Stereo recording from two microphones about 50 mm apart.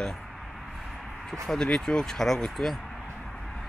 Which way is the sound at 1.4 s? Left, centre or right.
Centre.